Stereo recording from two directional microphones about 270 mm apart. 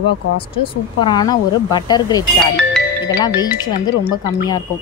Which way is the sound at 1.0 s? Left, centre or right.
Centre.